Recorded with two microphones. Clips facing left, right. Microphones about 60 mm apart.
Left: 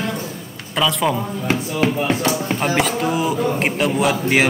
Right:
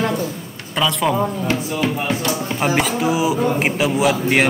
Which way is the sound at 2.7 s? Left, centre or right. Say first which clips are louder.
Right 1 dB; centre.